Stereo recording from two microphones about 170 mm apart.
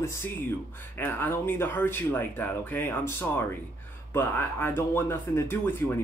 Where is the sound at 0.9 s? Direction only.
10° left (ahead or behind).